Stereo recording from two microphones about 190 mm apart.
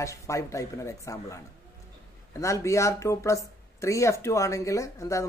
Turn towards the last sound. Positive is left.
turn(degrees=15)  # may be behind; listen again after turning